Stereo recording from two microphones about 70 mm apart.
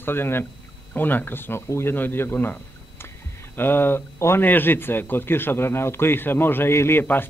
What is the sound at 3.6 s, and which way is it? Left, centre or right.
Speech, left.